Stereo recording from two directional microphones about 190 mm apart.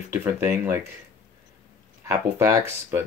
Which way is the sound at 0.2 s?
15° right (ahead or behind).